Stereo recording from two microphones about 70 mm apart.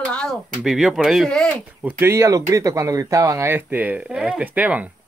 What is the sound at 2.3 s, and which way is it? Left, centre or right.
Speech, right.